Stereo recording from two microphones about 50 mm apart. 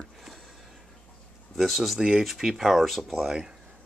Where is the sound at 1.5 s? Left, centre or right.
Centre.